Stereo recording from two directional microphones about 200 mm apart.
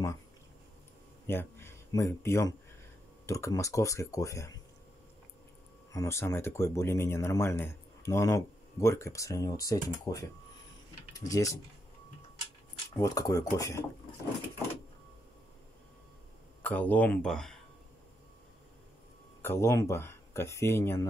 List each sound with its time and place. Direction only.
1.2 s speech: 10° left (ahead or behind)
5.9 s speech: 15° left (ahead or behind)
12.9 s speech: 15° left (ahead or behind)
16.6 s speech: 10° left (ahead or behind)
19.4 s speech: 15° left (ahead or behind)